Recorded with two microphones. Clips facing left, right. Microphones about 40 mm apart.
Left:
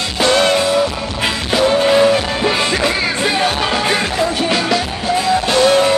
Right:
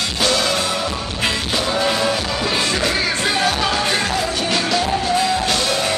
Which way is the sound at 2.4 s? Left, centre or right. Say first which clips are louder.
Left 3 dB; left.